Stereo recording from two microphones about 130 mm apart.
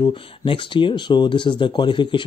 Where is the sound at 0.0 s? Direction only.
40° left (ahead or behind).